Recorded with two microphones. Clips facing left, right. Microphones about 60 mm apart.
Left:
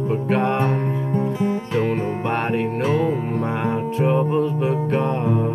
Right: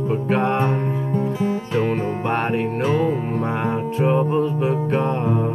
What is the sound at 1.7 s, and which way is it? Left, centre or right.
Music, right.